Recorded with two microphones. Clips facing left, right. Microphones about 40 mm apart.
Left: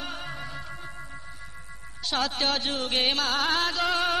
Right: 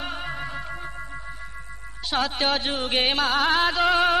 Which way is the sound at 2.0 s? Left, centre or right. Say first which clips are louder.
Right 3 dB; centre.